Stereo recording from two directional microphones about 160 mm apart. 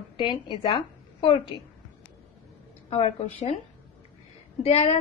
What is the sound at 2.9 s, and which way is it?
Speech, 40° left (ahead or behind).